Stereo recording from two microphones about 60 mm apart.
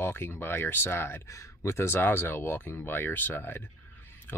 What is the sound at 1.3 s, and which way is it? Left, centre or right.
Speech, left.